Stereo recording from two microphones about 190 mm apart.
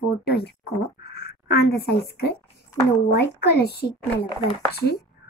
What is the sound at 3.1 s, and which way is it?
Speech, 60° left (ahead or behind).